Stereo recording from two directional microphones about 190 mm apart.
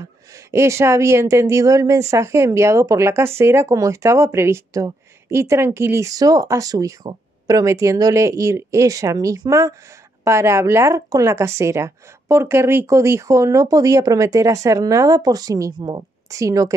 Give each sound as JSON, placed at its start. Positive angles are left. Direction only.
{"t": 0.5, "sound": "speech", "side_deg": -15}